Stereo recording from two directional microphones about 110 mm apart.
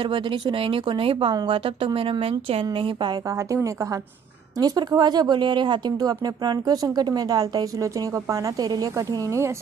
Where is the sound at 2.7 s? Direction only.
45° right (ahead or behind).